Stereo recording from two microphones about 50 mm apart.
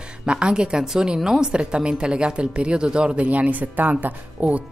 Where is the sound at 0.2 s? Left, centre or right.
Centre.